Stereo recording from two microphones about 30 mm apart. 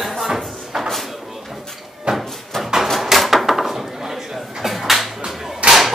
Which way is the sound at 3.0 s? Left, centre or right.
Centre.